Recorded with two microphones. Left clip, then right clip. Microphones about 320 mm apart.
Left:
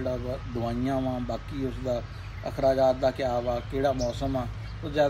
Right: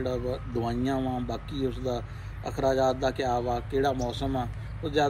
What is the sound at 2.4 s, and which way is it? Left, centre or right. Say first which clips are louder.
Speech: left 2 dB; centre.